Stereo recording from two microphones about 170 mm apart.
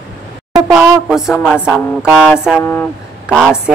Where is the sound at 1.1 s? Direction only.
5° right (ahead or behind).